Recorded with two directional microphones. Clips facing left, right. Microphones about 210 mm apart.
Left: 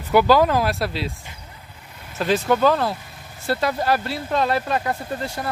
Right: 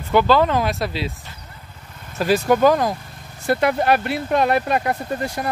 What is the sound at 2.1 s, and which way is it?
Speech, 10° right (ahead or behind).